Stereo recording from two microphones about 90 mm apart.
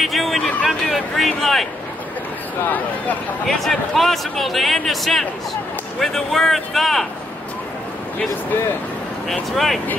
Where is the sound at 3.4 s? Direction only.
Centre (ahead or behind).